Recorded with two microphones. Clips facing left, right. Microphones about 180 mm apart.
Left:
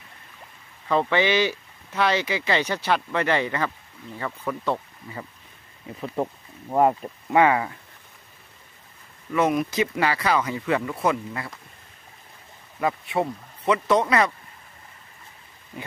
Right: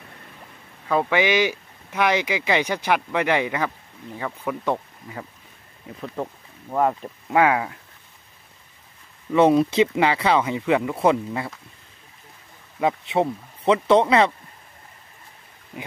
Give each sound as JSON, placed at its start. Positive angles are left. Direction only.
{"t": 0.8, "sound": "speech", "side_deg": -10}
{"t": 6.2, "sound": "speech", "side_deg": 10}
{"t": 7.0, "sound": "speech", "side_deg": -5}
{"t": 9.3, "sound": "speech", "side_deg": -30}
{"t": 10.4, "sound": "speech", "side_deg": -15}
{"t": 11.0, "sound": "speech", "side_deg": -25}
{"t": 12.8, "sound": "speech", "side_deg": -25}